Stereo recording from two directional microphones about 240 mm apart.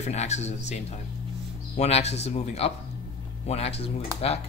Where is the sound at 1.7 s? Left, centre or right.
Left.